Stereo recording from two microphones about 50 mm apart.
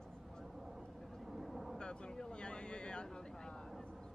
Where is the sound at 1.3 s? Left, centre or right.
Centre.